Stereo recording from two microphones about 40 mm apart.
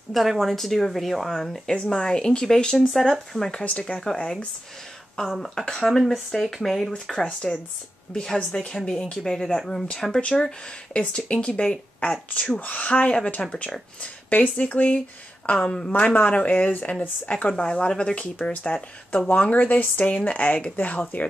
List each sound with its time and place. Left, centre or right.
0.1 s speech: centre
1.7 s speech: centre
2.9 s speech: centre
3.6 s speech: left
4.1 s speech: centre
5.8 s speech: centre
10.9 s speech: left
11.1 s speech: left
12.3 s speech: left
14.3 s speech: left
15.5 s speech: left
16.3 s speech: left
17.3 s speech: left